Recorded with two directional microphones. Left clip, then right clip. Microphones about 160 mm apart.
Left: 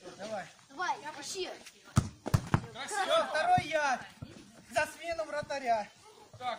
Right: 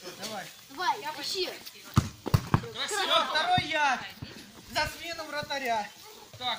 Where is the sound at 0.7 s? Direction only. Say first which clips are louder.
Right 5 dB; 50° left (ahead or behind).